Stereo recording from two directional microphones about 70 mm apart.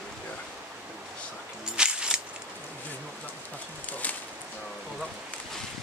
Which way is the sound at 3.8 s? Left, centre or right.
Left.